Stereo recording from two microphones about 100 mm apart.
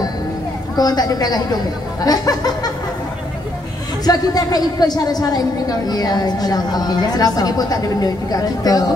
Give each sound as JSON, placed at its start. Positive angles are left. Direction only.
{"t": 0.7, "sound": "a woman's voice", "side_deg": 40}
{"t": 4.0, "sound": "a woman's voice", "side_deg": 40}